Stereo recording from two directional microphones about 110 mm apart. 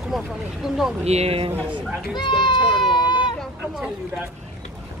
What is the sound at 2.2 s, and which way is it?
Speech, 50° left (ahead or behind).